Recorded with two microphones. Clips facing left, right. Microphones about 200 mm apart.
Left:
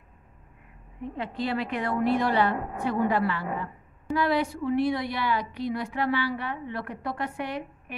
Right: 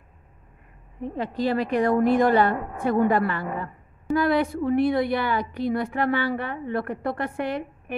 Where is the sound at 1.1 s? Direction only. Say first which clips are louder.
Right 5 dB; 40° right (ahead or behind).